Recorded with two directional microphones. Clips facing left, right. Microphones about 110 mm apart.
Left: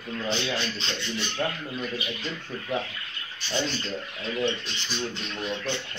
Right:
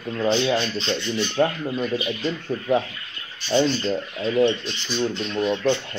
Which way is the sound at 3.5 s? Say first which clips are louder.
Right 9 dB; 35° right (ahead or behind).